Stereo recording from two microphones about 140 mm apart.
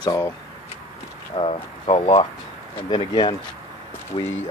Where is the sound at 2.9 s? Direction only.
35° left (ahead or behind).